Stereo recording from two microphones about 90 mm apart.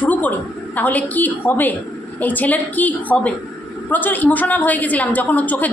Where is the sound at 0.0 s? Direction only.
20° left (ahead or behind).